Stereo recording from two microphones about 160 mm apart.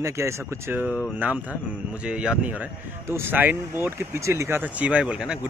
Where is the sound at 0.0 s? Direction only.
15° right (ahead or behind).